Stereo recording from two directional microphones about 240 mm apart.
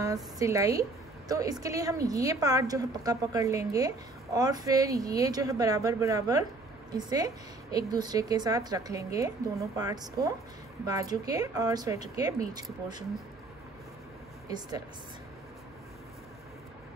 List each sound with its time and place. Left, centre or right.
0.0 s a woman's voice: centre